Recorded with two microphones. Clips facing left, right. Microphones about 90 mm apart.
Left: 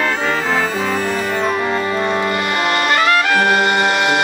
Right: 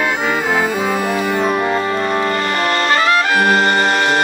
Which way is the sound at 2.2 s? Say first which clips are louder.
Right 1 dB; 15° left (ahead or behind).